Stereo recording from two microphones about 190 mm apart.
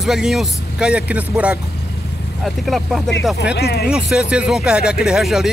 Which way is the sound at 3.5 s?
55° left (ahead or behind).